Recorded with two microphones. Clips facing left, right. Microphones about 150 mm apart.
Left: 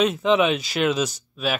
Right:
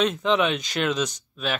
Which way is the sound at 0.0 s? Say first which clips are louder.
Left 3 dB; 5° left (ahead or behind).